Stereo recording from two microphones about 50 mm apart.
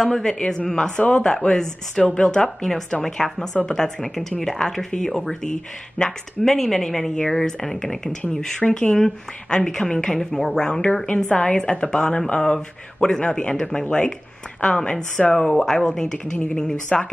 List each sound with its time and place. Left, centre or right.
0.0 s a woman's voice: centre
8.9 s a woman's voice: centre